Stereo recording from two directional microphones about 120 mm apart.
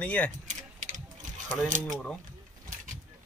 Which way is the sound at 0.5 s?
90° right.